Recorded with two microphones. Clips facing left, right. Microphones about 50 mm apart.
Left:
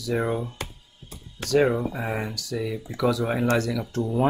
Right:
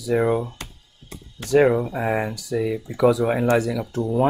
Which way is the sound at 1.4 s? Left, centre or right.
Centre.